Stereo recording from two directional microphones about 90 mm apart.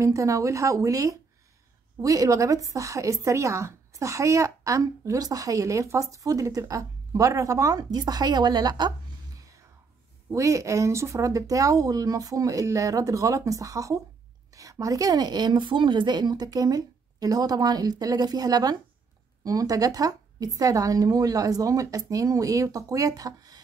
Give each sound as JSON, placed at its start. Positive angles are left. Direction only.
{"t": 0.0, "sound": "a woman's voice", "side_deg": -35}
{"t": 10.3, "sound": "a woman's voice", "side_deg": -35}